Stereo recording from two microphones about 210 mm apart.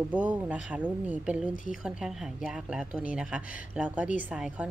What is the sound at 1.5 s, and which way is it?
Speech, 40° left (ahead or behind).